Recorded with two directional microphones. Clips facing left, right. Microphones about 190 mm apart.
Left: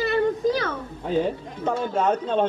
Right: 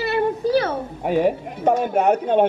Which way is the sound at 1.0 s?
70° right (ahead or behind).